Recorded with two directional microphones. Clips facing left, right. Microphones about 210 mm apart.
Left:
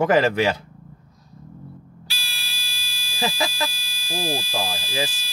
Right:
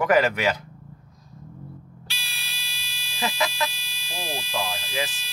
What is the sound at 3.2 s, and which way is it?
Speech, 30° left (ahead or behind).